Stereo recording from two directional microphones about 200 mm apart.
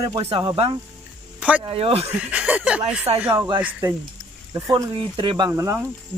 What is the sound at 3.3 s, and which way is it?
Speech, 20° right (ahead or behind).